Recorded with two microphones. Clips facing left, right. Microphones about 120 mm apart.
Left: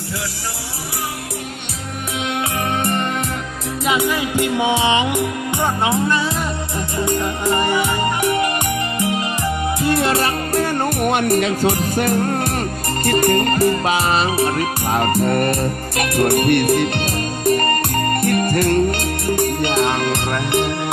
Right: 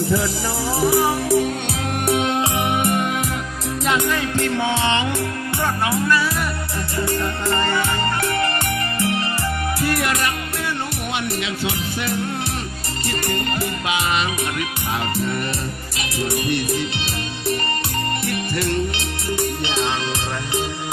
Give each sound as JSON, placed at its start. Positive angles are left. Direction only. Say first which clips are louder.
{"t": 2.8, "sound": "music", "louder": "even", "side_deg": -5}
{"t": 3.8, "sound": "music", "louder": "left 2 dB", "side_deg": 5}
{"t": 4.4, "sound": "music", "louder": "left 5 dB", "side_deg": 15}
{"t": 9.8, "sound": "music", "louder": "left 5 dB", "side_deg": 25}